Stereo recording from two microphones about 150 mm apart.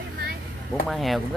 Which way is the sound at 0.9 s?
Centre (ahead or behind).